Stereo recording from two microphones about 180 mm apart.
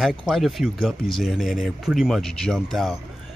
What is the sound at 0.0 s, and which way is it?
Speech, centre (ahead or behind).